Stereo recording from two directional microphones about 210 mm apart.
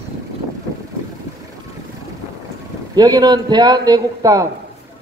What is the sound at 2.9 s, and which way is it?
Speech, 20° right (ahead or behind).